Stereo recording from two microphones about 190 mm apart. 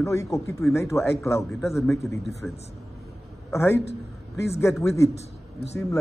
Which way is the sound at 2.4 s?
10° left (ahead or behind).